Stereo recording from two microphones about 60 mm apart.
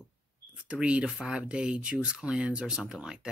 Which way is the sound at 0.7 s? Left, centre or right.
Centre.